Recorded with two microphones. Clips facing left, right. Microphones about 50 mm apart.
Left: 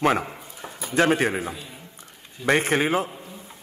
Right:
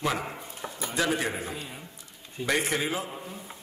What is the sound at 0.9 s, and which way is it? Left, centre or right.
A man's voice, left.